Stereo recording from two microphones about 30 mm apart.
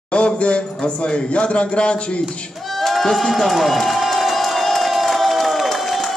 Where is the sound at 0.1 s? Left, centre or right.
Left.